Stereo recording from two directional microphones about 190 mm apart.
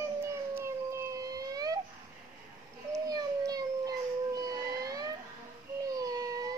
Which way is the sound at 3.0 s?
20° right (ahead or behind).